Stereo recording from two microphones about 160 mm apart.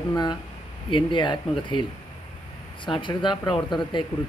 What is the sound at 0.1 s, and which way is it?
Speech, 25° left (ahead or behind).